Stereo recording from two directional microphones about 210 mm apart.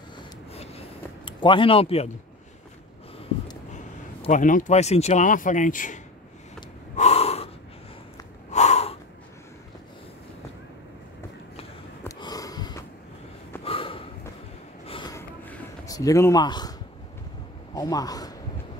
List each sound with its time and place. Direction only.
0.5 s a sound: 30° left (ahead or behind)
3.7 s speech: 35° left (ahead or behind)
7.0 s gasp: 30° left (ahead or behind)
8.5 s snort: 30° left (ahead or behind)
12.2 s sniff: 15° left (ahead or behind)
13.7 s snort: 25° left (ahead or behind)
14.9 s a sound: 20° left (ahead or behind)
17.7 s a man's voice: 15° left (ahead or behind)